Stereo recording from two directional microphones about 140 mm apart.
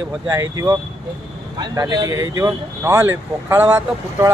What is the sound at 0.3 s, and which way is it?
Speech, 25° right (ahead or behind).